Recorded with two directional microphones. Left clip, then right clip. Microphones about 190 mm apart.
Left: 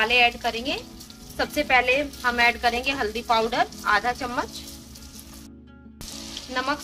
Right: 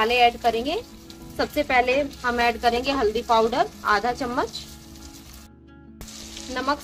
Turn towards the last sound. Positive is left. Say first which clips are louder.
# right 1 dB
turn(degrees=-65)  # may be behind; listen again after turning